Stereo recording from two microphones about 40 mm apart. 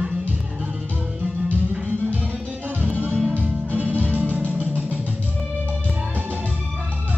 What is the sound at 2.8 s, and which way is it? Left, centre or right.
Music, right.